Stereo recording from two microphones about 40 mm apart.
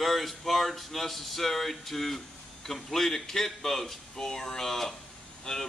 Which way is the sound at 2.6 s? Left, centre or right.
Centre.